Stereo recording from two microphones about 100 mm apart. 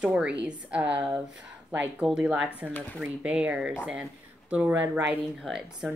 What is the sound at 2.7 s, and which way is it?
Speech, 20° left (ahead or behind).